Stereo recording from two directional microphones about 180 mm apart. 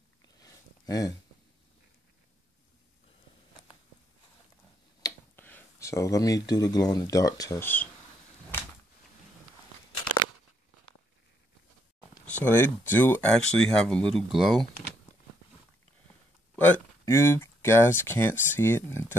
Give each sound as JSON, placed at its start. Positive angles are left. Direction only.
{"t": 0.4, "sound": "a sound", "side_deg": 20}
{"t": 5.0, "sound": "speech", "side_deg": 10}
{"t": 12.4, "sound": "speech", "side_deg": 10}
{"t": 16.5, "sound": "speech", "side_deg": 10}